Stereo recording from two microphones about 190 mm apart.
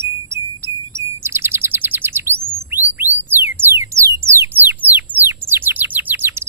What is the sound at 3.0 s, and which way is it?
Music, 10° right (ahead or behind).